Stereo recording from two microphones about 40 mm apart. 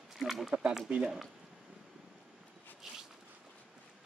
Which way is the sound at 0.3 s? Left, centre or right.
Centre.